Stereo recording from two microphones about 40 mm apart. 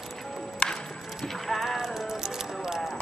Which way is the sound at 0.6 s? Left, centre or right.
Left.